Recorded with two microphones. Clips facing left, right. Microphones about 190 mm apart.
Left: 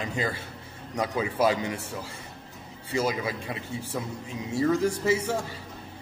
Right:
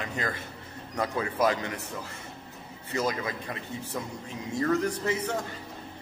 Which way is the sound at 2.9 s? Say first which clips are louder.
Left 2 dB; 10° left (ahead or behind).